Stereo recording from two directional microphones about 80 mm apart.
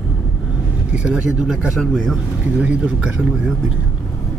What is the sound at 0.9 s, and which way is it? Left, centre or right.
Speech, centre.